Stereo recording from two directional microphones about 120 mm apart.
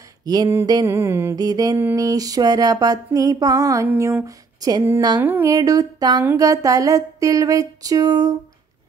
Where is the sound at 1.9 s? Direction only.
30° right (ahead or behind).